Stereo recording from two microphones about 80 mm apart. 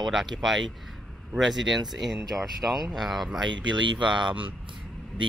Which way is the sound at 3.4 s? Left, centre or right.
Right.